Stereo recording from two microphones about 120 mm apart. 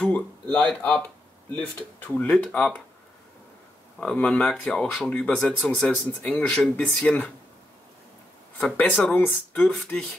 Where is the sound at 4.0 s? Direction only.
10° left (ahead or behind).